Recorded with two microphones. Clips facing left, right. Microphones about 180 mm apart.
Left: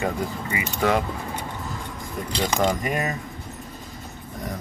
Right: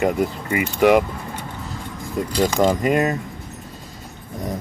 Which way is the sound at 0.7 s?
15° right (ahead or behind).